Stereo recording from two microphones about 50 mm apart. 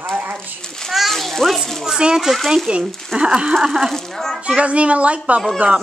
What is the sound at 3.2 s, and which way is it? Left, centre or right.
Speech, centre.